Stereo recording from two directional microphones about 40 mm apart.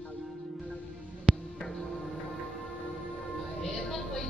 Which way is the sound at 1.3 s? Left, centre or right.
Right.